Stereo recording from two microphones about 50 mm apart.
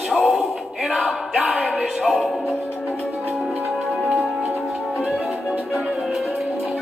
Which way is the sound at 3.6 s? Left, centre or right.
Centre.